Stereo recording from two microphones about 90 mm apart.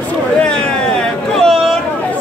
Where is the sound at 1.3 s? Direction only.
Centre (ahead or behind).